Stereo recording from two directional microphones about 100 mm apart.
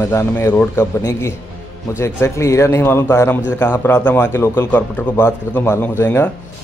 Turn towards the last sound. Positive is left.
turn(degrees=20)  # may be behind; listen again after turning